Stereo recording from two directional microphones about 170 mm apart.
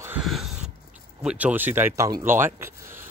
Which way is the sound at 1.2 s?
5° right (ahead or behind).